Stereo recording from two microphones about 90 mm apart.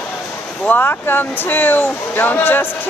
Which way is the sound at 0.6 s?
20° left (ahead or behind).